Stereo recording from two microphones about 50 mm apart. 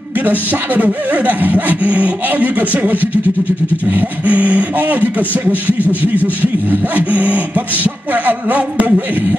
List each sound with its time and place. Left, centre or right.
0.2 s speech: right